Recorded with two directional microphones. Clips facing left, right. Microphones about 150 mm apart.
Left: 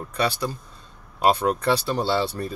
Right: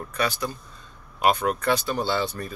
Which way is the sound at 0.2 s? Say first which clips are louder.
Left 2 dB; 30° left (ahead or behind).